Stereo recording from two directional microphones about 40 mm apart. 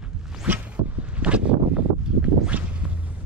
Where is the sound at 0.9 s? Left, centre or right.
Right.